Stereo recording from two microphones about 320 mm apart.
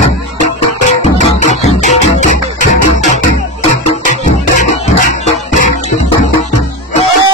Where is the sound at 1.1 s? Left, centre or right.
Left.